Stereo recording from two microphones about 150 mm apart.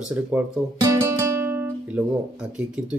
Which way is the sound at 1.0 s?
15° right (ahead or behind).